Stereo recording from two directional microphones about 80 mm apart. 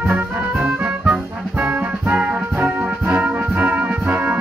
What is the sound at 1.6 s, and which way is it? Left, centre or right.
Brass instrument, centre.